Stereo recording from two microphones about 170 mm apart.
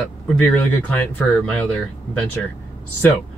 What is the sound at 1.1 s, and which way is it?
Speech, 5° left (ahead or behind).